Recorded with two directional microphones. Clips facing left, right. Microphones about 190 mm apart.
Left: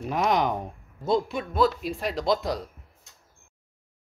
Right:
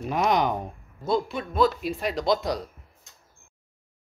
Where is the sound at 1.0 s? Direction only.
20° left (ahead or behind).